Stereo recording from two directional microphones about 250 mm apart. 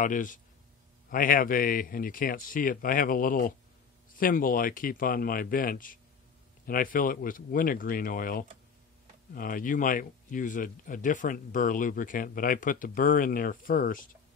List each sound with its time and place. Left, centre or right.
0.0 s speech: left